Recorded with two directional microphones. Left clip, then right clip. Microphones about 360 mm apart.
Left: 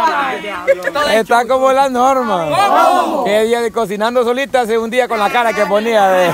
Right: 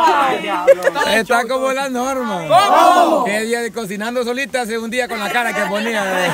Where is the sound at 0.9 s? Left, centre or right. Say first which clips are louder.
Left 3 dB; centre.